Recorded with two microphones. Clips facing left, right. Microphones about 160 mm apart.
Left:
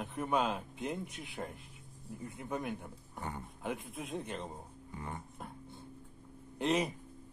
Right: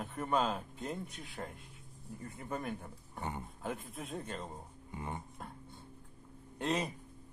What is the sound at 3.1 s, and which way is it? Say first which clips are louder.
Speech: right 1 dB; 20° right (ahead or behind).